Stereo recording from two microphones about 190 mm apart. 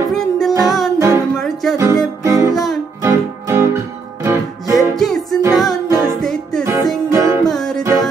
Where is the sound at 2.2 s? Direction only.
15° right (ahead or behind).